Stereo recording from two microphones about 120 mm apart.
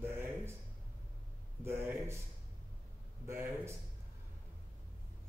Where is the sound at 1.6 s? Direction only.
20° right (ahead or behind).